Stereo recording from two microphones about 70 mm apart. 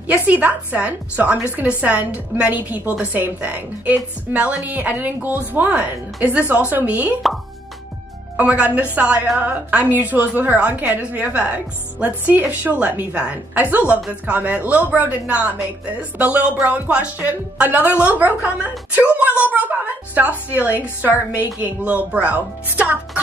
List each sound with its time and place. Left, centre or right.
0.0 s a woman's voice: right
8.4 s a woman's voice: right